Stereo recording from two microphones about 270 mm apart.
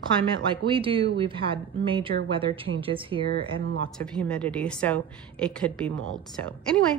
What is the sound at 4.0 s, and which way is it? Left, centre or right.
A woman's voice, centre.